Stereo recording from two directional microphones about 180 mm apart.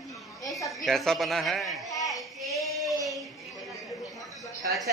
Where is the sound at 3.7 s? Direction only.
20° left (ahead or behind).